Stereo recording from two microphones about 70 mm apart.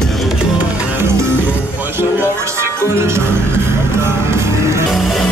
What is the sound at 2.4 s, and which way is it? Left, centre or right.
Speech, right.